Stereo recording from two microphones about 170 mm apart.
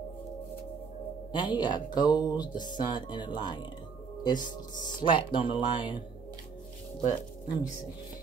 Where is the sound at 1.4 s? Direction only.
25° left (ahead or behind).